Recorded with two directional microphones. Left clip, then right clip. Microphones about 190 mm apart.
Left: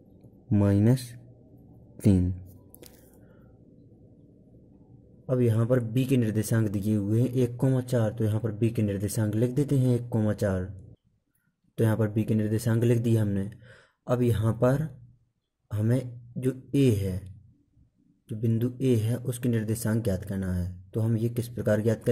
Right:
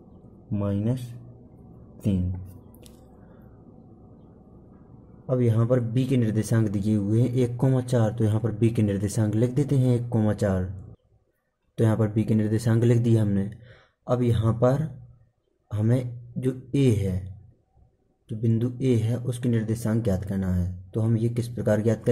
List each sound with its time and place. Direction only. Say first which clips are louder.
0.5 s speech: left 4 dB; 45° left (ahead or behind)
5.2 s a man's voice: right 1 dB; 20° left (ahead or behind)
11.7 s a man's voice: right 2 dB; 20° left (ahead or behind)
18.3 s speech: right 2 dB; 20° left (ahead or behind)